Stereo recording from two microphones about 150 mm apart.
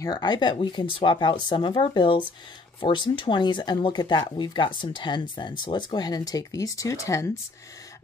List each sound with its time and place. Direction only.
0.0 s speech: 30° left (ahead or behind)